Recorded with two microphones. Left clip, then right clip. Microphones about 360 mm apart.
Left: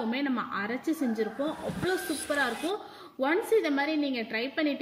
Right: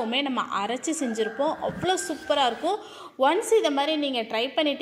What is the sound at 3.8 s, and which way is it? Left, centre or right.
Speech, right.